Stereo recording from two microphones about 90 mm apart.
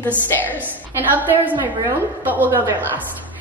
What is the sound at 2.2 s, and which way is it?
Speech, 20° right (ahead or behind).